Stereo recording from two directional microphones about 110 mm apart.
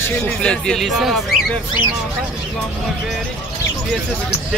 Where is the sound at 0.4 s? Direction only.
10° left (ahead or behind).